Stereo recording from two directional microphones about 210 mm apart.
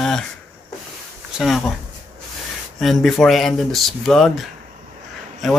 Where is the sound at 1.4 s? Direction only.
Centre (ahead or behind).